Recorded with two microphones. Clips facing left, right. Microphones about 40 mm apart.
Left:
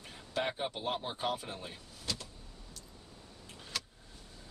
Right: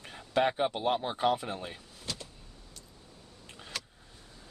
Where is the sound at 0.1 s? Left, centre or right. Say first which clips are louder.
Right 8 dB; right.